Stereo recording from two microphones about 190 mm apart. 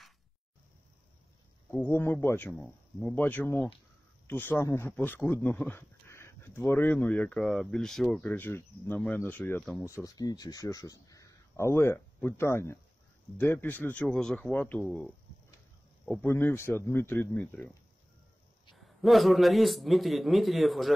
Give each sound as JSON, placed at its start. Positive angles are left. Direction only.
{"t": 1.7, "sound": "speech", "side_deg": 10}
{"t": 10.0, "sound": "a man's voice", "side_deg": 20}
{"t": 18.8, "sound": "a man's voice", "side_deg": 0}